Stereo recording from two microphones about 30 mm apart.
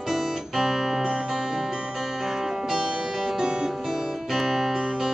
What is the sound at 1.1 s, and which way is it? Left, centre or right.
Music, centre.